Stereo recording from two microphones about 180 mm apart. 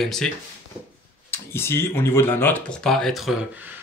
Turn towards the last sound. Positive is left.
turn(degrees=0)  # may be behind; listen again after turning